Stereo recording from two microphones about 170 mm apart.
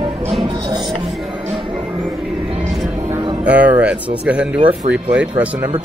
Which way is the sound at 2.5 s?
35° right (ahead or behind).